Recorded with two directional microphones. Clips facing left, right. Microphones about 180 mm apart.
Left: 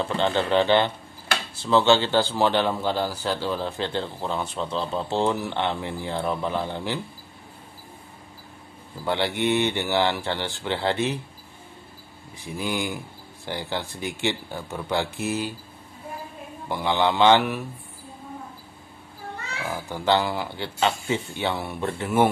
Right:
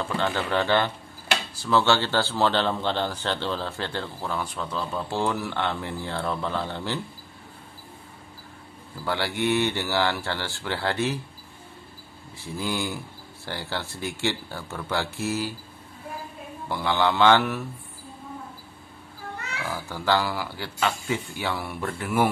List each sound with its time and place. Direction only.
0.0 s speech: 20° left (ahead or behind)
9.0 s speech: 20° left (ahead or behind)
12.4 s speech: 15° left (ahead or behind)
16.6 s speech: 15° left (ahead or behind)
19.5 s speech: 20° left (ahead or behind)